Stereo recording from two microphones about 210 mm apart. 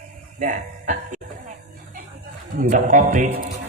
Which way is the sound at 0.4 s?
35° right (ahead or behind).